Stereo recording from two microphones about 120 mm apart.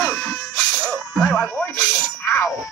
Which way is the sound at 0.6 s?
5° left (ahead or behind).